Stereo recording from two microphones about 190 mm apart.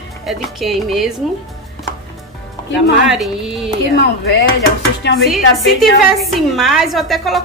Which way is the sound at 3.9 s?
60° left (ahead or behind).